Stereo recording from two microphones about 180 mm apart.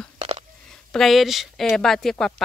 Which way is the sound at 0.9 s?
Centre (ahead or behind).